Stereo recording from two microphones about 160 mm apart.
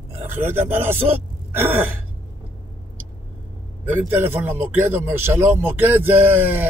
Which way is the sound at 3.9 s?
15° right (ahead or behind).